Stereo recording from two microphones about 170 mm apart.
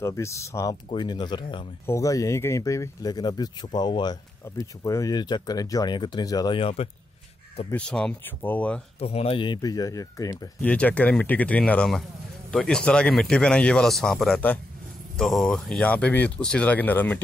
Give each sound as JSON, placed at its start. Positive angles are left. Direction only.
{"t": 0.0, "sound": "speech", "side_deg": 15}
{"t": 7.7, "sound": "speech", "side_deg": 5}
{"t": 9.0, "sound": "speech", "side_deg": 35}
{"t": 10.6, "sound": "speech", "side_deg": 10}